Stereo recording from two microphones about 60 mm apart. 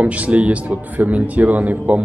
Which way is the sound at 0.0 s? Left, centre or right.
Right.